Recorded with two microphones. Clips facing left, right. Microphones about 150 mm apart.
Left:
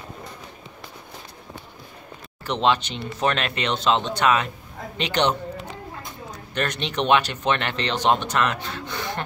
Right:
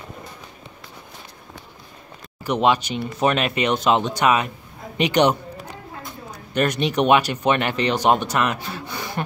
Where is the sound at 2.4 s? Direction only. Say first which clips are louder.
Right 3 dB; 10° right (ahead or behind).